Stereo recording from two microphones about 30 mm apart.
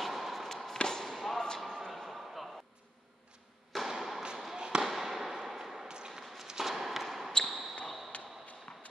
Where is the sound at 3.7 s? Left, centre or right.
Centre.